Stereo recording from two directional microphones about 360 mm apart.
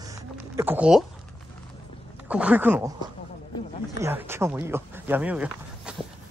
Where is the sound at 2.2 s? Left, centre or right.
Centre.